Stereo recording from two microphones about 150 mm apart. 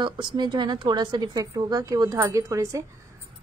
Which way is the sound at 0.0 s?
30° right (ahead or behind).